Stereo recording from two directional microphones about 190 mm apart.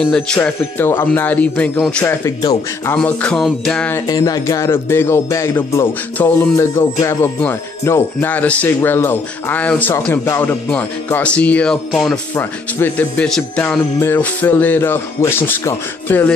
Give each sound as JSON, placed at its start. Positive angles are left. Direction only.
{"t": 0.1, "sound": "music", "side_deg": 5}
{"t": 4.1, "sound": "music", "side_deg": 20}